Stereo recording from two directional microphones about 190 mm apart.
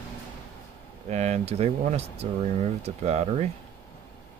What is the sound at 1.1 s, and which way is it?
Speech, 35° right (ahead or behind).